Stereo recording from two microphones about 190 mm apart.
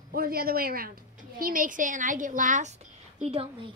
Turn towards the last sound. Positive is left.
turn(degrees=-30)  # may be behind; listen again after turning